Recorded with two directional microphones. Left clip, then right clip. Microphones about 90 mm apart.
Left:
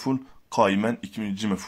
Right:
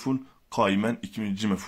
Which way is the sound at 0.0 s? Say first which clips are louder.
Left 2 dB; 35° left (ahead or behind).